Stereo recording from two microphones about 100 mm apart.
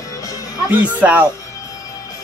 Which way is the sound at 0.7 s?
15° right (ahead or behind).